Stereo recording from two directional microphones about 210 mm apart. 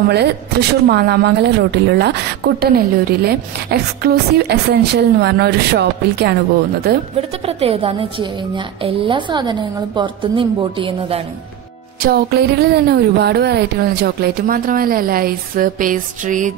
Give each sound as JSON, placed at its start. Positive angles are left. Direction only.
{"t": 0.1, "sound": "speech", "side_deg": -50}
{"t": 7.2, "sound": "a woman's voice", "side_deg": -30}
{"t": 12.0, "sound": "speech", "side_deg": -50}